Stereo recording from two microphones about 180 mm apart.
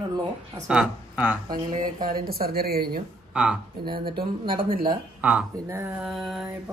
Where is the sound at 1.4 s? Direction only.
50° right (ahead or behind).